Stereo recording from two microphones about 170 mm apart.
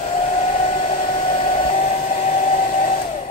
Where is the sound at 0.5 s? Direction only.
40° left (ahead or behind).